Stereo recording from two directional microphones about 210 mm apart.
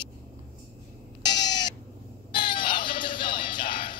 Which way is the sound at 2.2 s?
20° left (ahead or behind).